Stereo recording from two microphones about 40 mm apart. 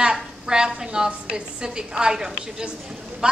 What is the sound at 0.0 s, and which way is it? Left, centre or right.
A woman's voice, centre.